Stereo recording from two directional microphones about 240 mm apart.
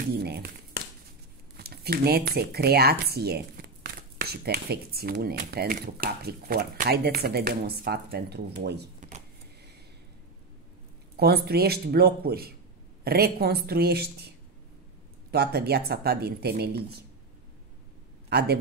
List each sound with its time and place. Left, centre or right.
0.0 s a sound: right
1.6 s speech: right
11.1 s speech: right
15.3 s speech: right